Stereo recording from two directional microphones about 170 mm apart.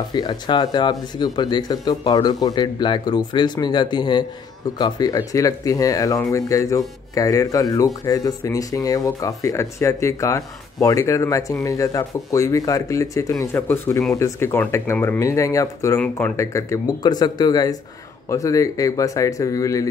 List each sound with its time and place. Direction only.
0.1 s speech: 25° left (ahead or behind)